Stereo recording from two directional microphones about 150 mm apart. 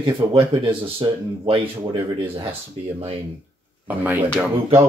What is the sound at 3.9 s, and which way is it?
Speech, 10° right (ahead or behind).